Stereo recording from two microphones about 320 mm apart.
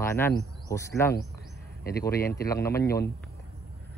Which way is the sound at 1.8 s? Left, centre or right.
Left.